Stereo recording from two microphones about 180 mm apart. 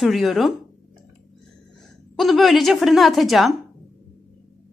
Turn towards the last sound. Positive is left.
turn(degrees=0)  # may be behind; listen again after turning